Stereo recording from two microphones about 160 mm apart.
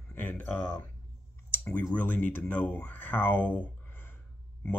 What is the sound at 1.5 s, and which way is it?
Clicking, 10° left (ahead or behind).